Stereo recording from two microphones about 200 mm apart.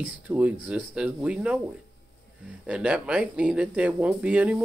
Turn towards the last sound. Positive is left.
turn(degrees=-5)  # may be behind; listen again after turning